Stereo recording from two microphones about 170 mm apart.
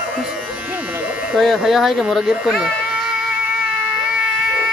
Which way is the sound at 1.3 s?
Centre (ahead or behind).